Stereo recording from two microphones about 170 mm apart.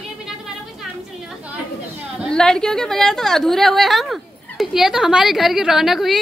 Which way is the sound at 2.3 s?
5° left (ahead or behind).